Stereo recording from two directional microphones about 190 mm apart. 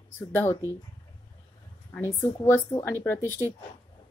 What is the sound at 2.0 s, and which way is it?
A woman's voice, 10° left (ahead or behind).